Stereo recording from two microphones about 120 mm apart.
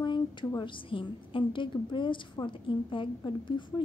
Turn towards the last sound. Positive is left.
turn(degrees=40)  # may be behind; listen again after turning